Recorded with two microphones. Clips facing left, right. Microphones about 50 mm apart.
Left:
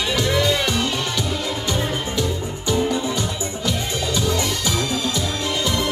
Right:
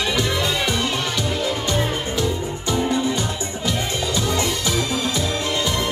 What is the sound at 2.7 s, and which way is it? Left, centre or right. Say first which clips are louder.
Music: even; right.